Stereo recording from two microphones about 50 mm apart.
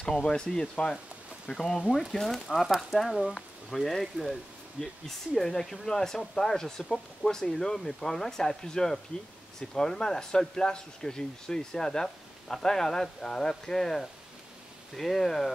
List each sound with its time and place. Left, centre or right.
0.0 s speech: centre
1.8 s speech: centre
2.1 s speech: centre